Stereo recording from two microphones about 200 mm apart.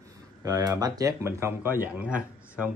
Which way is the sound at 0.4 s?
20° right (ahead or behind).